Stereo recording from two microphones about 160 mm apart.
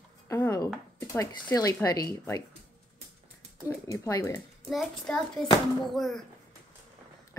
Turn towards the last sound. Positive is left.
turn(degrees=0)  # may be behind; listen again after turning